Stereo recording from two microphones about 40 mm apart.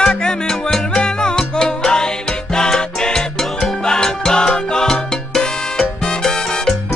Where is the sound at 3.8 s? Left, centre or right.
Centre.